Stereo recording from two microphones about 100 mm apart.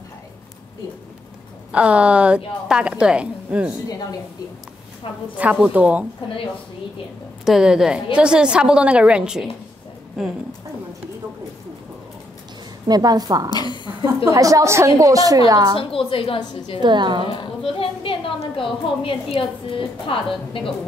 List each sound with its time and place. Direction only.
1.7 s a woman's voice: 10° right (ahead or behind)
5.4 s a woman's voice: 15° right (ahead or behind)
7.4 s a woman's voice: 5° right (ahead or behind)
12.8 s a woman's voice: 40° right (ahead or behind)
13.5 s a woman's voice: 45° left (ahead or behind)
14.0 s a woman's voice: 35° right (ahead or behind)
15.8 s a woman's voice: 65° left (ahead or behind)
16.8 s a woman's voice: 50° right (ahead or behind)
17.6 s a woman's voice: 70° left (ahead or behind)